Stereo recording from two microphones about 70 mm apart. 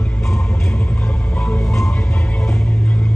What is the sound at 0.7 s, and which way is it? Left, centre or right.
Vehicle, centre.